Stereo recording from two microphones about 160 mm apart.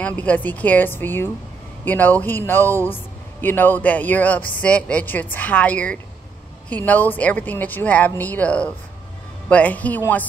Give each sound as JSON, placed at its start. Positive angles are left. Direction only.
{"t": 0.0, "sound": "a man's voice", "side_deg": 10}